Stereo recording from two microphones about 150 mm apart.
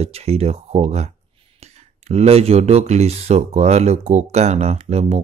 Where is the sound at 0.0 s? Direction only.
45° right (ahead or behind).